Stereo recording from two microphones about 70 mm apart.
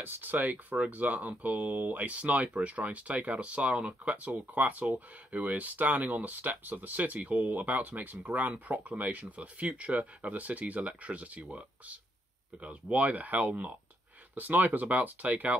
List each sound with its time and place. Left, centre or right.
0.0 s speech: right